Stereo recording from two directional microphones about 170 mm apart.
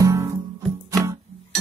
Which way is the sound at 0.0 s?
20° right (ahead or behind).